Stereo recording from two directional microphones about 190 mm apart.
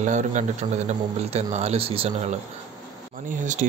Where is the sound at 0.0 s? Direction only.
40° right (ahead or behind).